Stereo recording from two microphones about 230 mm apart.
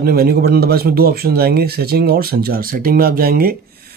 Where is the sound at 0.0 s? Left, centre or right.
Right.